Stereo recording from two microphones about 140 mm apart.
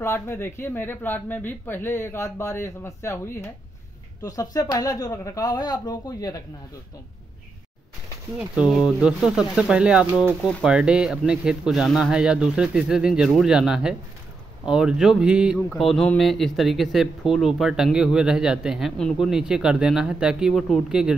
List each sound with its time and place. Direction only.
0.0 s speech: 15° left (ahead or behind)
8.5 s speech: 5° right (ahead or behind)